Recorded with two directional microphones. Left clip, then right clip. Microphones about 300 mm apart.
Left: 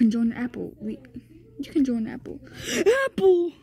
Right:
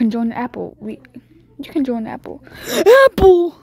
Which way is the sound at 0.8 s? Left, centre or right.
Centre.